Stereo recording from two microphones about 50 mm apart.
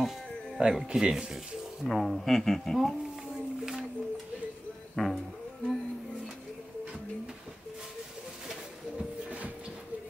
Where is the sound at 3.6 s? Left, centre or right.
Centre.